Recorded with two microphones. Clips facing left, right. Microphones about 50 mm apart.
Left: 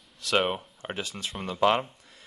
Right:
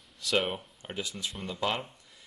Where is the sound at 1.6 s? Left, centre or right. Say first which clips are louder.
Left 9 dB; left.